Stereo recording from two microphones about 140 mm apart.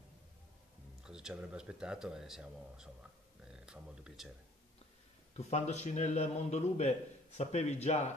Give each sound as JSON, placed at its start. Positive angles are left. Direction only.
{"t": 1.0, "sound": "speech", "side_deg": -5}
{"t": 5.3, "sound": "a man's voice", "side_deg": 50}